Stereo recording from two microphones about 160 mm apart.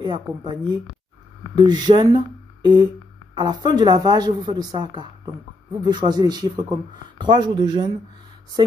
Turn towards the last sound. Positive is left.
turn(degrees=-25)  # may be behind; listen again after turning